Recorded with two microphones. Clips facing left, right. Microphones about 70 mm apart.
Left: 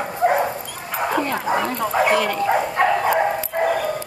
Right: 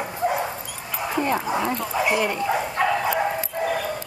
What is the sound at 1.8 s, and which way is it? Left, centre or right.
Speech, left.